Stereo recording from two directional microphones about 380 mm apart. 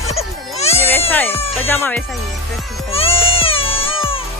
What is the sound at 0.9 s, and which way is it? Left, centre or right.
Speech, centre.